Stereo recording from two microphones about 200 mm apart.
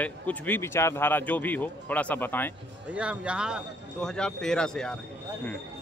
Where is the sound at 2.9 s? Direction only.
5° right (ahead or behind).